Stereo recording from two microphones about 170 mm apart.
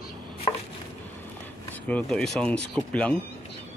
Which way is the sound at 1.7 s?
5° left (ahead or behind).